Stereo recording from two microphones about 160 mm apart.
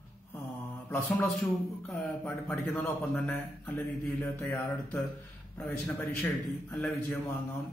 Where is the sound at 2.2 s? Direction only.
15° left (ahead or behind).